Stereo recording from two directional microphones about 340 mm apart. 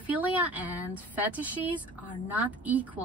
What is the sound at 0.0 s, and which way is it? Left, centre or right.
A woman's voice, centre.